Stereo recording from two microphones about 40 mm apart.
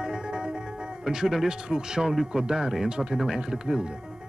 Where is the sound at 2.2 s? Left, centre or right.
Right.